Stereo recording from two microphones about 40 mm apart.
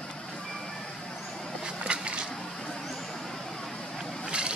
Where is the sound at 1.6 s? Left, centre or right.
Right.